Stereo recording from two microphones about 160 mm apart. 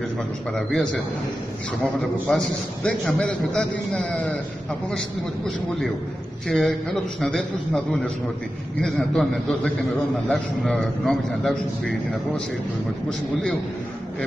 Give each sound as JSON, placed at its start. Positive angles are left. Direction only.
{"t": 0.6, "sound": "a man's voice", "side_deg": 5}
{"t": 2.2, "sound": "a man's voice", "side_deg": 5}